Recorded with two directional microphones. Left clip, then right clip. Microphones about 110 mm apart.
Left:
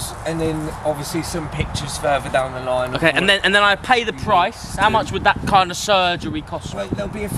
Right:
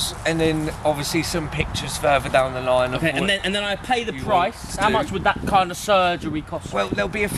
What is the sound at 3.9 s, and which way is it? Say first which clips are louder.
Speech: left 4 dB; 15° left (ahead or behind).